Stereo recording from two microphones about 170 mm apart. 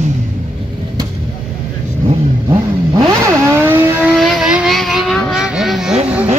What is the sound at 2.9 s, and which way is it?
Vehicle, 20° right (ahead or behind).